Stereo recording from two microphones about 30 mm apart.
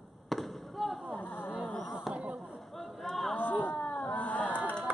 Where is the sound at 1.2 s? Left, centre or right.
Left.